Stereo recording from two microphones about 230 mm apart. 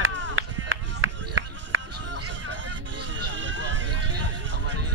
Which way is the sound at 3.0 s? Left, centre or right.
Right.